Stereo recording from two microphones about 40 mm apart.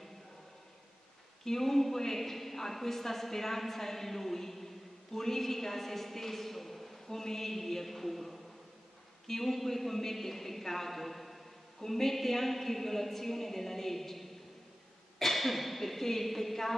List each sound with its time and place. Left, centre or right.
1.4 s a woman's voice: centre